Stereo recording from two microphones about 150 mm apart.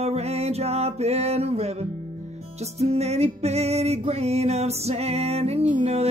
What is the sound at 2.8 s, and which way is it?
Music, 45° right (ahead or behind).